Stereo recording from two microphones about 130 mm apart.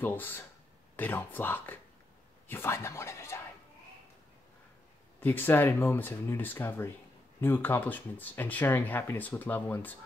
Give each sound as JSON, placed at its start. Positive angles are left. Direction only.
{"t": 0.0, "sound": "speech", "side_deg": 15}
{"t": 5.2, "sound": "speech", "side_deg": 15}